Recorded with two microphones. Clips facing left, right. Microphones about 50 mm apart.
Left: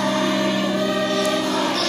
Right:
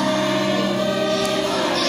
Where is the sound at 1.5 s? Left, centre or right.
Right.